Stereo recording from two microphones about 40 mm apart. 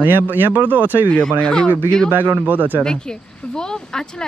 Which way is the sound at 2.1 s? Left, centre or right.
Right.